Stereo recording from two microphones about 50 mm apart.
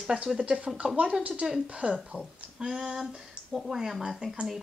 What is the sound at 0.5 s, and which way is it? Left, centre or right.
Speech, right.